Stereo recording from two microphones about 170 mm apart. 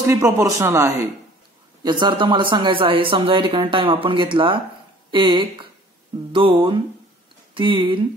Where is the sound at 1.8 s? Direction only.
25° right (ahead or behind).